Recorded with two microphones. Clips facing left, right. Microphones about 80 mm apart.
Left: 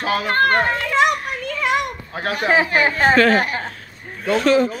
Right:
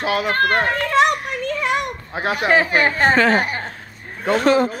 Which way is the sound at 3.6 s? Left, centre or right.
Right.